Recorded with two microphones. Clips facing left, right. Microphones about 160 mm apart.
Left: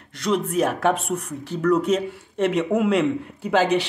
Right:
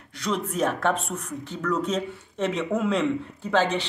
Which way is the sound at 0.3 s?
5° left (ahead or behind).